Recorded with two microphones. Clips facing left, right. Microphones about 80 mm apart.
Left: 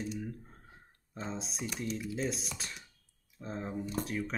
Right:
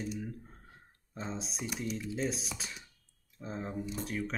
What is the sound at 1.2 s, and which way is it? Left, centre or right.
Speech, centre.